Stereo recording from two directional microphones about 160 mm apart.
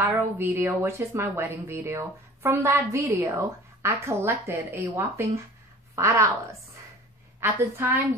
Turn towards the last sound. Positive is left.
turn(degrees=-15)  # may be behind; listen again after turning